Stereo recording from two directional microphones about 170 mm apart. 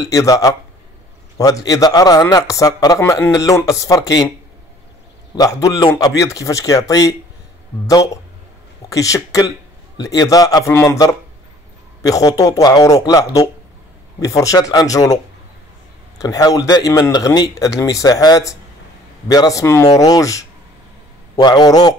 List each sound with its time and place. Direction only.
0.0 s a man's voice: 20° left (ahead or behind)
5.3 s a man's voice: 20° left (ahead or behind)
8.8 s a man's voice: 20° left (ahead or behind)
16.2 s a man's voice: 20° left (ahead or behind)